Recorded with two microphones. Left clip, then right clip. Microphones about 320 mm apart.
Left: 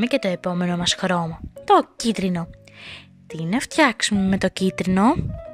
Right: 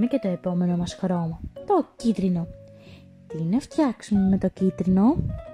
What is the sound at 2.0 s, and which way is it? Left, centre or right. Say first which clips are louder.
A woman's voice: left 2 dB; left.